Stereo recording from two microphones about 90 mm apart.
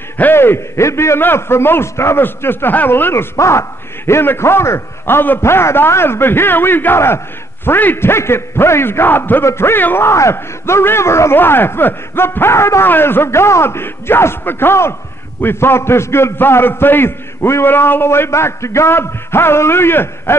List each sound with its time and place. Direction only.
0.2 s a man's voice: 25° left (ahead or behind)